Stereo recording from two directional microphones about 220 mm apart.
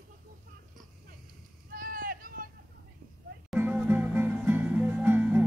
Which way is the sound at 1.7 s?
40° right (ahead or behind).